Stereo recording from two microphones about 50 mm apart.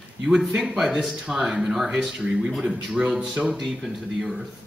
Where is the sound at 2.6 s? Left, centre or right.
Centre.